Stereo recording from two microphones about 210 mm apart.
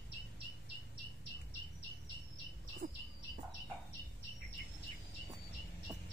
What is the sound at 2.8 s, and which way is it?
Bird, 45° right (ahead or behind).